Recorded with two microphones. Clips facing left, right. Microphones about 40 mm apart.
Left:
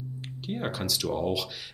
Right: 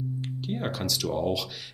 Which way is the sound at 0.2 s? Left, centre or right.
Centre.